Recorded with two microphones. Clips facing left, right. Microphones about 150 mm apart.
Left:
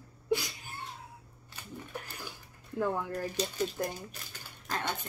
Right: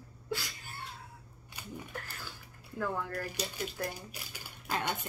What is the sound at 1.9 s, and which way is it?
Speech, 15° left (ahead or behind).